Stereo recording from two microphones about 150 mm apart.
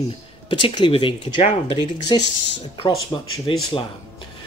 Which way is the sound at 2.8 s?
35° left (ahead or behind).